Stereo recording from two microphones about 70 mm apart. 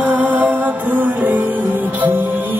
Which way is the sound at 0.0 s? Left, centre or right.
Right.